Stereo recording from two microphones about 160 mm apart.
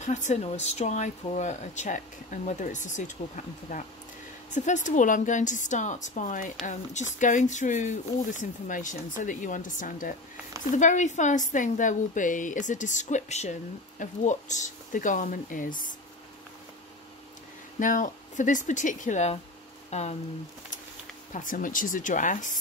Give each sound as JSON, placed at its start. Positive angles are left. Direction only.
{"t": 0.0, "sound": "a woman's voice", "side_deg": 50}
{"t": 17.7, "sound": "a woman's voice", "side_deg": 55}
{"t": 21.3, "sound": "speech", "side_deg": 55}